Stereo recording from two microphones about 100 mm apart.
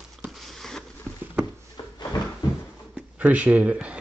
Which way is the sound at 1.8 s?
45° left (ahead or behind).